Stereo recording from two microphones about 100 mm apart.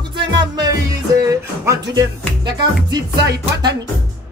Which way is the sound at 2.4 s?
45° right (ahead or behind).